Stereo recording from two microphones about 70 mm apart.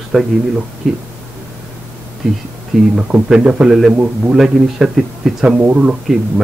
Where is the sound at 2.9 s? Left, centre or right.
Centre.